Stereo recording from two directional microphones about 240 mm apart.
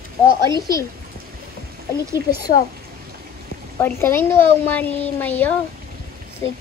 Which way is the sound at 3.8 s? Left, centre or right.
Centre.